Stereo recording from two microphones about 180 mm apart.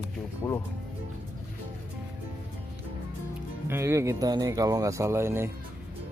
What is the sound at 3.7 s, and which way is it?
Speech, 15° right (ahead or behind).